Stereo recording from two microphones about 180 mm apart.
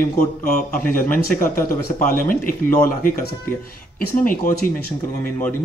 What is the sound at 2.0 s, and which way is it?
Speech, 50° left (ahead or behind).